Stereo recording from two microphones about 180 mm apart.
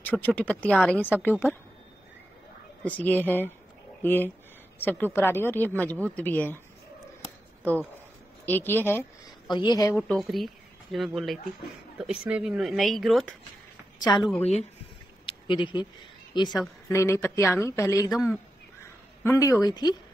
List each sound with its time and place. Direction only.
0.0 s a woman's voice: 10° left (ahead or behind)
2.8 s a woman's voice: 10° left (ahead or behind)
8.5 s a woman's voice: 10° left (ahead or behind)
9.5 s speech: 25° left (ahead or behind)
9.9 s a woman's voice: centre (ahead or behind)
13.9 s a woman's voice: 25° left (ahead or behind)
14.4 s a woman's voice: 35° left (ahead or behind)